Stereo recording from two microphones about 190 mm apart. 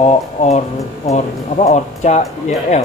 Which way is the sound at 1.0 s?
35° left (ahead or behind).